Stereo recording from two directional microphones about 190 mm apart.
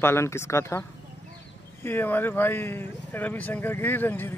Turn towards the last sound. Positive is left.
turn(degrees=10)  # may be behind; listen again after turning